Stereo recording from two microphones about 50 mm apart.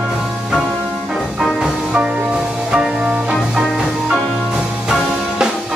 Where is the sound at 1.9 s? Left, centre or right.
Right.